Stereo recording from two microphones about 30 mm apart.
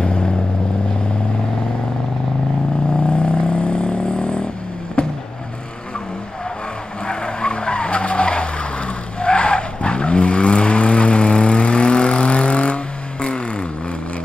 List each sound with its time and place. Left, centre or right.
0.0 s vehicle: left
2.9 s vehicle: left
5.0 s boat: left
7.1 s vehicle: left